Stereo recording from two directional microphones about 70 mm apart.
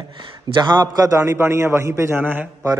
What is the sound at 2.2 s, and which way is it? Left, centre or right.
Speech, right.